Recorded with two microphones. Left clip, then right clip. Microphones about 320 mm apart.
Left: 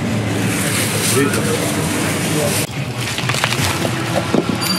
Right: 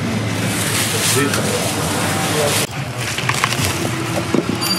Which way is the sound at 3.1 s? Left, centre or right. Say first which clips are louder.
Even; centre.